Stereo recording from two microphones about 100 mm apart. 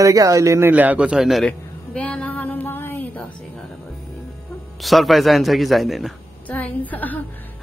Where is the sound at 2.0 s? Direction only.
10° left (ahead or behind).